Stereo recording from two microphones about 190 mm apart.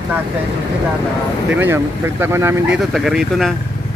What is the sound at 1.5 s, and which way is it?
Speech, 10° right (ahead or behind).